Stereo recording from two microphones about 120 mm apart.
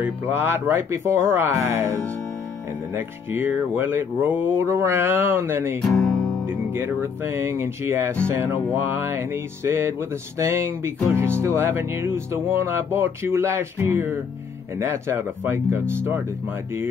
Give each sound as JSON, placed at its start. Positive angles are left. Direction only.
{"t": 0.0, "sound": "music", "side_deg": -15}
{"t": 5.8, "sound": "speech", "side_deg": 0}
{"t": 6.4, "sound": "music", "side_deg": -15}